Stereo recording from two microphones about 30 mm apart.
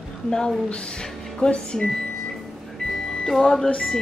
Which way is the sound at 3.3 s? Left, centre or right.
Centre.